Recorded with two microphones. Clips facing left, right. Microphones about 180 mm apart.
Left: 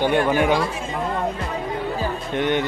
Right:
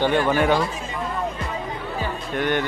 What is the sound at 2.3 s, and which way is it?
Speech, 20° left (ahead or behind).